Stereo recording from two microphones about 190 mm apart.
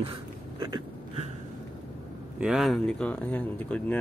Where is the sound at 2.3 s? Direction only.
Centre (ahead or behind).